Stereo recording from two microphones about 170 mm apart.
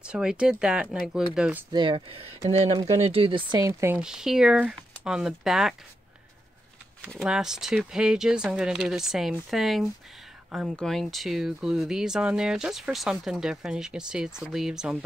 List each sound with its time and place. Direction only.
0.0 s speech: 5° right (ahead or behind)
1.7 s speech: 30° right (ahead or behind)
4.0 s speech: 5° right (ahead or behind)
7.1 s speech: centre (ahead or behind)